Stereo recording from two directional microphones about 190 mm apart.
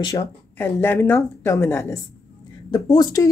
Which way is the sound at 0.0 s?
20° left (ahead or behind).